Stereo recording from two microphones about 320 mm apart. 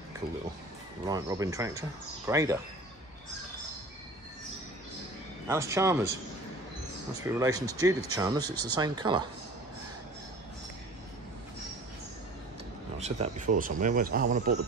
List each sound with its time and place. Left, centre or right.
1.0 s speech: centre
5.5 s speech: centre
7.2 s speech: centre
13.0 s speech: right